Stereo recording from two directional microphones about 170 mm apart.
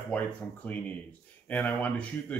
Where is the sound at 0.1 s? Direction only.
10° left (ahead or behind).